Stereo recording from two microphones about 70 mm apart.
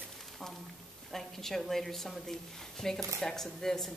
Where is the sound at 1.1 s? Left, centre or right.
Centre.